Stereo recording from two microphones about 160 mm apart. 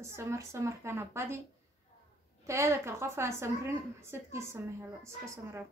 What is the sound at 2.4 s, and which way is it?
A woman's voice, 15° right (ahead or behind).